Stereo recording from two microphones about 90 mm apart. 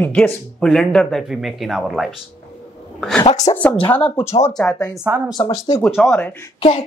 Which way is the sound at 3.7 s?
80° left.